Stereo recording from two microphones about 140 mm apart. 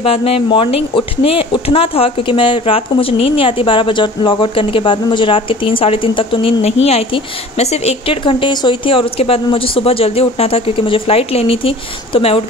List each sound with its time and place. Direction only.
0.0 s speech: 40° left (ahead or behind)